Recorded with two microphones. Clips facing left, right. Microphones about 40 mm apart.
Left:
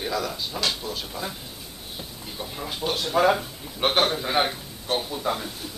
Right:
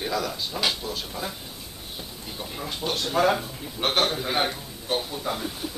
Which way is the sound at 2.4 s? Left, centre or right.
Centre.